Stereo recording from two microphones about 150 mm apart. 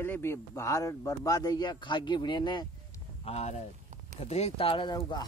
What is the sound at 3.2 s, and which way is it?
Speech, 45° left (ahead or behind).